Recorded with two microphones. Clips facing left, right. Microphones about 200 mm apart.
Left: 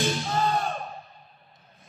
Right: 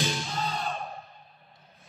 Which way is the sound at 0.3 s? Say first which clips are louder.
Left 7 dB; 55° left (ahead or behind).